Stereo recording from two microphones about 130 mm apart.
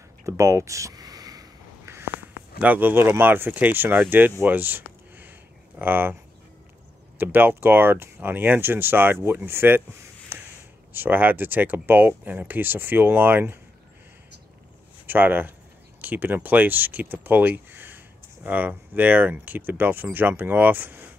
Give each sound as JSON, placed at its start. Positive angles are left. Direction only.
{"t": 0.2, "sound": "a sound", "side_deg": -20}
{"t": 2.6, "sound": "speech", "side_deg": -15}
{"t": 7.2, "sound": "speech", "side_deg": -15}
{"t": 10.3, "sound": "a sound", "side_deg": -15}
{"t": 10.9, "sound": "speech", "side_deg": -15}
{"t": 15.0, "sound": "speech", "side_deg": -15}